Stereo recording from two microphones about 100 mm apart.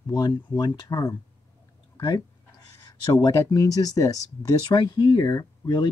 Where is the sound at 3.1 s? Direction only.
35° left (ahead or behind).